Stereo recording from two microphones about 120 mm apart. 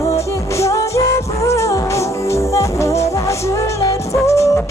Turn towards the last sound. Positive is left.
turn(degrees=25)  # may be behind; listen again after turning